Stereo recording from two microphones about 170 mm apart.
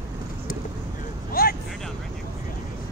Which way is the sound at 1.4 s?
60° left (ahead or behind).